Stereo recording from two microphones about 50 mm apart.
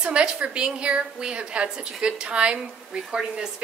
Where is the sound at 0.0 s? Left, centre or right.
Centre.